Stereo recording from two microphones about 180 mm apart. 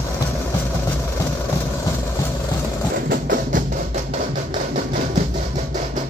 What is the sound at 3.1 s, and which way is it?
Music, 50° right (ahead or behind).